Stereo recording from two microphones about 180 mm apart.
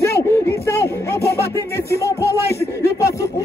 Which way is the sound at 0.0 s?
15° left (ahead or behind).